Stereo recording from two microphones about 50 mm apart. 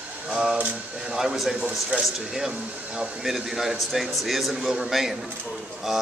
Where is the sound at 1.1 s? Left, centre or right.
Centre.